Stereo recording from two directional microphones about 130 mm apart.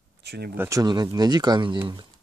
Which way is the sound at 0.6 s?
25° right (ahead or behind).